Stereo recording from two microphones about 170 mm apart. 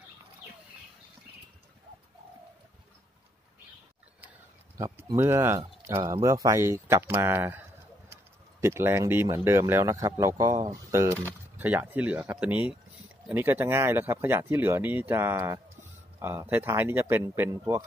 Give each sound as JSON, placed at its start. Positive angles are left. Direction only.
{"t": 4.7, "sound": "speech", "side_deg": -20}